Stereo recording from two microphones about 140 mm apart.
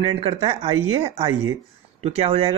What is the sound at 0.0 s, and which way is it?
Speech, 45° right (ahead or behind).